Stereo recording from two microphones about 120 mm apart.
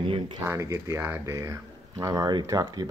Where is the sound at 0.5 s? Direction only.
25° right (ahead or behind).